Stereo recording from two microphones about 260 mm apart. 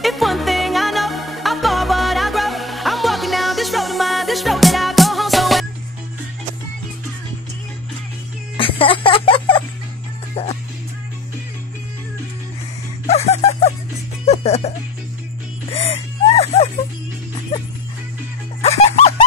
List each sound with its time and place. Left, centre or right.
0.0 s music: centre
8.5 s music: left
13.0 s music: left
15.7 s whimper: left
18.6 s music: left